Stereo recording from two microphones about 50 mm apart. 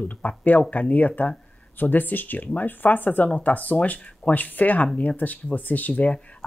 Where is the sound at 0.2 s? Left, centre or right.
Left.